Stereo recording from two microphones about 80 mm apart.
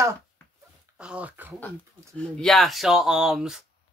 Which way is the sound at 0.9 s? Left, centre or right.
Centre.